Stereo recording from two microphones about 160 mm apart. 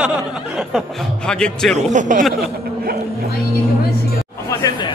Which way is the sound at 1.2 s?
5° left (ahead or behind).